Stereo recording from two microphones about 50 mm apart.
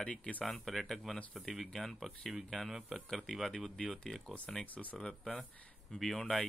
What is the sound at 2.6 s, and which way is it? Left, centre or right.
Speech, centre.